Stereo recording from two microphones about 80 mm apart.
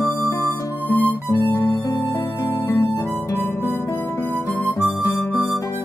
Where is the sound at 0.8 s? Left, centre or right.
Centre.